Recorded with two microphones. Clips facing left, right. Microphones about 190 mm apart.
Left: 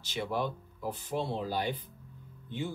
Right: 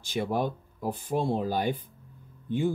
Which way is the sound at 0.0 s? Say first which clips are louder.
Right 5 dB; 50° right (ahead or behind).